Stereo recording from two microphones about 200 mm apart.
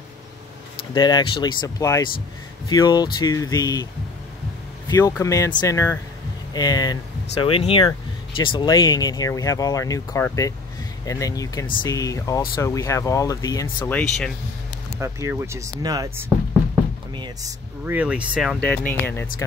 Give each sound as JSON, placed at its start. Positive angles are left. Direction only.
{"t": 0.9, "sound": "speech", "side_deg": 20}
{"t": 4.8, "sound": "speech", "side_deg": 20}
{"t": 15.0, "sound": "speech", "side_deg": -15}
{"t": 17.9, "sound": "speech", "side_deg": -5}